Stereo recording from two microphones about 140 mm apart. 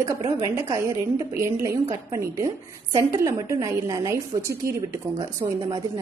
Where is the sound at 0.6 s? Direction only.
25° right (ahead or behind).